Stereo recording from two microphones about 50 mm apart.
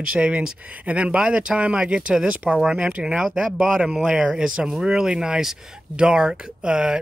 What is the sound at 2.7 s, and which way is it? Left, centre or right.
Speech, right.